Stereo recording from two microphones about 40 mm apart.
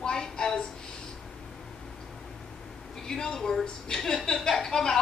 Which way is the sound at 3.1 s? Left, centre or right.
Centre.